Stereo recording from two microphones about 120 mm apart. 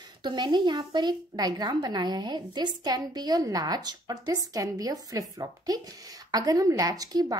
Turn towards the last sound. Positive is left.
turn(degrees=-35)  # may be behind; listen again after turning